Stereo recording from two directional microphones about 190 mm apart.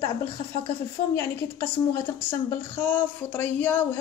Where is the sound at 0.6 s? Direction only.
15° left (ahead or behind).